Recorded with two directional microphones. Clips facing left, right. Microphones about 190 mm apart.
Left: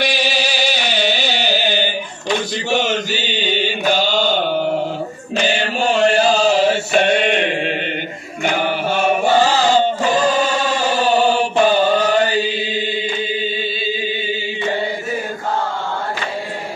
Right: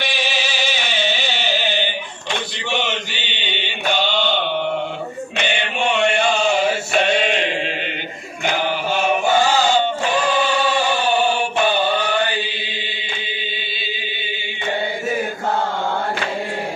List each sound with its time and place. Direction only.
0.0 s music: 40° left (ahead or behind)
2.7 s mantra: 40° left (ahead or behind)
7.0 s mantra: 55° left (ahead or behind)
9.2 s chant: 35° left (ahead or behind)